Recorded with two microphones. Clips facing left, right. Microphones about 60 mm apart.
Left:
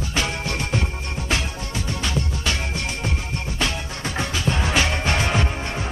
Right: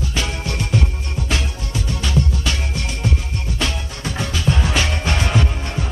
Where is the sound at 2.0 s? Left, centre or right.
Left.